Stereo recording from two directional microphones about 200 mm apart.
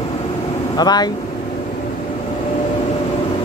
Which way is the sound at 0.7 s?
20° left (ahead or behind).